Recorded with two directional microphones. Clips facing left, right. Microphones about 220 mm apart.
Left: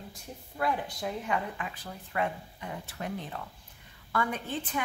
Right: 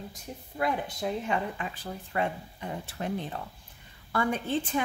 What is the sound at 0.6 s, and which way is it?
Speech, 20° right (ahead or behind).